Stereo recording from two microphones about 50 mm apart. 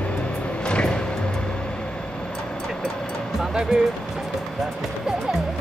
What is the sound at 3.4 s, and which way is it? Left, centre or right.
Music, centre.